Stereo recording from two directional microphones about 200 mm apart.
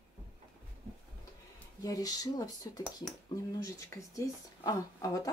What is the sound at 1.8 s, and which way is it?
Speech, 20° left (ahead or behind).